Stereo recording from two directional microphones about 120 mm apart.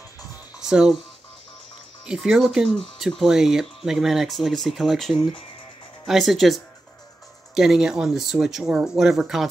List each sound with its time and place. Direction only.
0.6 s speech: 5° right (ahead or behind)
2.0 s speech: 5° right (ahead or behind)